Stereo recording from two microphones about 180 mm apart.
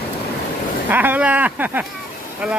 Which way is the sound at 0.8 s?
10° right (ahead or behind).